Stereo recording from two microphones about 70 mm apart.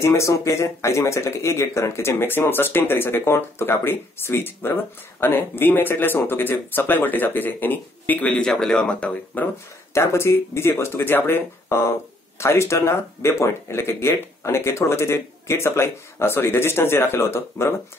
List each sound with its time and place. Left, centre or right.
0.0 s speech: left
9.9 s speech: left